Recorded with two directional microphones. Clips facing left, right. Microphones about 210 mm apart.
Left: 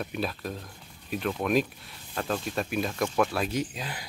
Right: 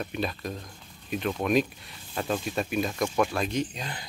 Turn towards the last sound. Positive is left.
turn(degrees=10)  # may be behind; listen again after turning